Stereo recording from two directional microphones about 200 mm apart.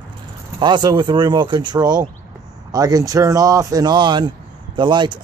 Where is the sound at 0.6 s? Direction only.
20° right (ahead or behind).